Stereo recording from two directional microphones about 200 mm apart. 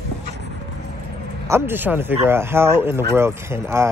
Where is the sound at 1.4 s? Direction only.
10° right (ahead or behind).